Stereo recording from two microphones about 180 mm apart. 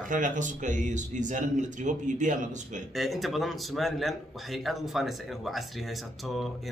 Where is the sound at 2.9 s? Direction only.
Centre (ahead or behind).